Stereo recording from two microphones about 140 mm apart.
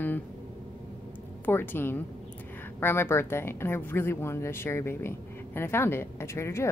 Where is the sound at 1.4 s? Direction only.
15° left (ahead or behind).